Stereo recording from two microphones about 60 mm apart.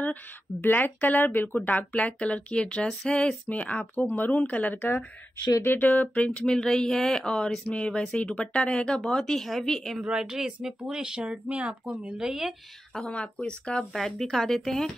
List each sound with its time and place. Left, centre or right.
0.0 s speech: left; by 3.3 s centre
3.4 s speech: left; by 10.0 s centre
10.0 s speech: centre
12.4 s speech: centre
13.0 s speech: centre